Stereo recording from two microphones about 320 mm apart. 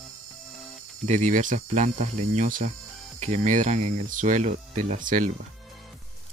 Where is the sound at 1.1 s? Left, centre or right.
Right.